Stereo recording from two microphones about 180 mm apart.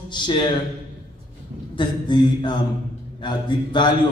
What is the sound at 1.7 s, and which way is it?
Speech, 25° left (ahead or behind).